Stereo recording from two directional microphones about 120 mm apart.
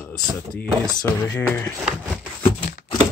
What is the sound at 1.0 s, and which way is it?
Speech, 20° left (ahead or behind).